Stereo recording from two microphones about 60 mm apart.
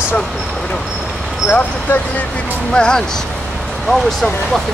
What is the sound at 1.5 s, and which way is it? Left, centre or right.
Speech, left.